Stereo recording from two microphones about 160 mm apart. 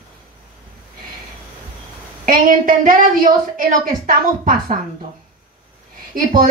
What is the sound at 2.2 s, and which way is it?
A woman's voice, 60° right (ahead or behind).